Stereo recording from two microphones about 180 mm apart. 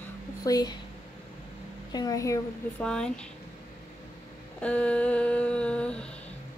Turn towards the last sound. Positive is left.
turn(degrees=5)  # may be behind; listen again after turning